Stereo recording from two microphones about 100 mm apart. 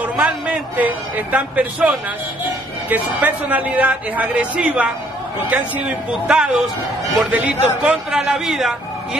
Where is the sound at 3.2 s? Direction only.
15° right (ahead or behind).